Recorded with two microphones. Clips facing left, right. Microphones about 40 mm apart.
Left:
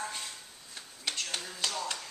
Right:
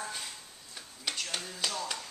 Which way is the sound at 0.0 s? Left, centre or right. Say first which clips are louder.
Left 1 dB; centre.